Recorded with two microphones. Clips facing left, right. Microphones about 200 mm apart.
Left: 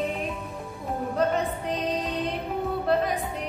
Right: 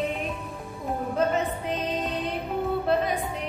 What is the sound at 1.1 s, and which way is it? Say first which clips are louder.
Music: even; centre (ahead or behind).